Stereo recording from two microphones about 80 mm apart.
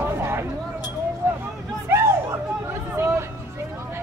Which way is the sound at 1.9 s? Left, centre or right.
Right.